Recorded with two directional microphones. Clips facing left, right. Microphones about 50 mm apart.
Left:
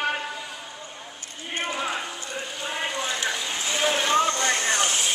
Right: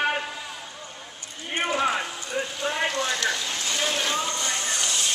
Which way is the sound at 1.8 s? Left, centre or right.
Centre.